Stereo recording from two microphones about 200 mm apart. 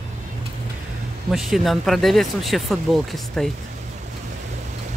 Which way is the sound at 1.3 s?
Centre (ahead or behind).